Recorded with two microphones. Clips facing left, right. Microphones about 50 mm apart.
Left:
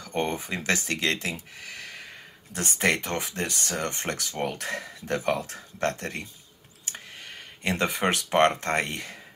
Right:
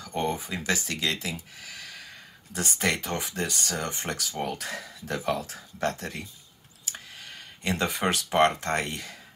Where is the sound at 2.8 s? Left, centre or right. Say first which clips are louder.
Left 3 dB; centre.